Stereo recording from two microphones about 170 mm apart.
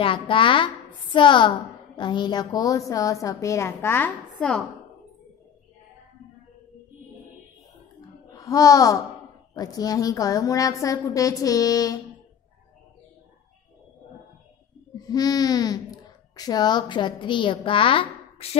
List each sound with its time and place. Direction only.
0.0 s a woman's voice: 30° left (ahead or behind); by 4.6 s 10° left (ahead or behind)
8.3 s a child's voice: 20° left (ahead or behind)
15.0 s speech: 20° left (ahead or behind)